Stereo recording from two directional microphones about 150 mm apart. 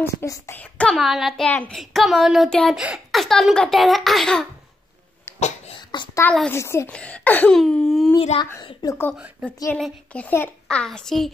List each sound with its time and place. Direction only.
0.0 s a child's voice: 15° left (ahead or behind)
5.8 s a sound: 30° left (ahead or behind)
6.5 s a child's voice: 20° left (ahead or behind)
8.3 s speech: 45° left (ahead or behind)
8.8 s a child's voice: 15° left (ahead or behind)
9.1 s a woman's voice: 10° right (ahead or behind)
9.8 s speech: 5° left (ahead or behind)